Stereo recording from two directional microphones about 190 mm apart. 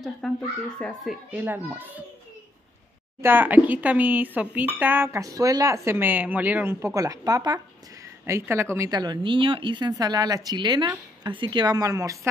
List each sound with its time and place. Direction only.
0.2 s a child's voice: centre (ahead or behind)
1.3 s speech: 10° right (ahead or behind)
3.2 s speech: 10° right (ahead or behind)